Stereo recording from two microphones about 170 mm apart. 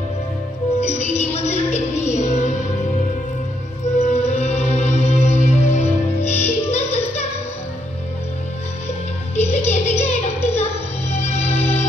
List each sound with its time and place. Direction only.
0.7 s music: 40° left (ahead or behind)
4.0 s music: 40° left (ahead or behind)
9.3 s music: 40° left (ahead or behind)